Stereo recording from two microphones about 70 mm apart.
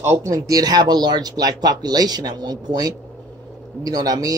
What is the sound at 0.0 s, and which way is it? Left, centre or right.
Speech, right.